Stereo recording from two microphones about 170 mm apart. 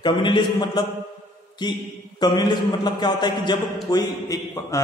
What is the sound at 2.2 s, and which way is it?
A man's voice, 25° left (ahead or behind).